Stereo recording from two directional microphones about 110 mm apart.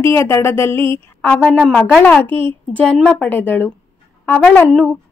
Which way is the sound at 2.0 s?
15° left (ahead or behind).